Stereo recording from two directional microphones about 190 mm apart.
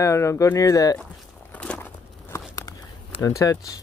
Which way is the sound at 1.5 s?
5° left (ahead or behind).